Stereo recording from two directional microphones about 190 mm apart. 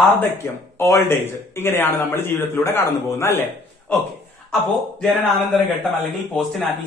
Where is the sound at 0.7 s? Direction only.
15° left (ahead or behind).